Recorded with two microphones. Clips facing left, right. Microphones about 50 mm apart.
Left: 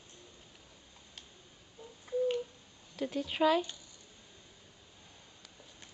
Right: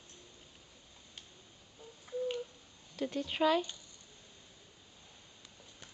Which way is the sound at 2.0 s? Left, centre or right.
Centre.